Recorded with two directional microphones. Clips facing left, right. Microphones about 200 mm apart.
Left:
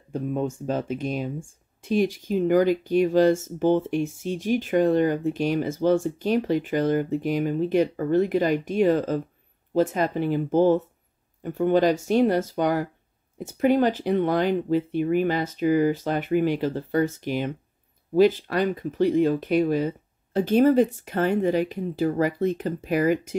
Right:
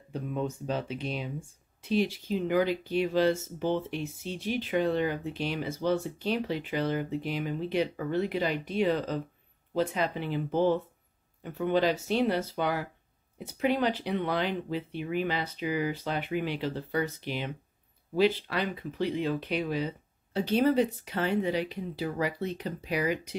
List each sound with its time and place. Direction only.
0.1 s speech: 45° left (ahead or behind)